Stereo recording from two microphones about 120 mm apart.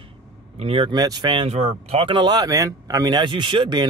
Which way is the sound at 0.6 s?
50° right (ahead or behind).